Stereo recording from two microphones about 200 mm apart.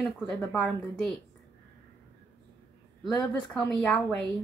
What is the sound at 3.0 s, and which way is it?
A woman's voice, 5° left (ahead or behind).